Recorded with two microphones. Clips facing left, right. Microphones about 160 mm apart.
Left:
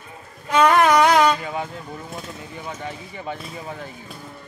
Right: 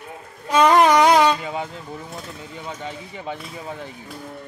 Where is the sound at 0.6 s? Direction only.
15° right (ahead or behind).